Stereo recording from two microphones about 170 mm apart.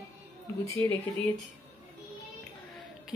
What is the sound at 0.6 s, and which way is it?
Speech, 15° left (ahead or behind).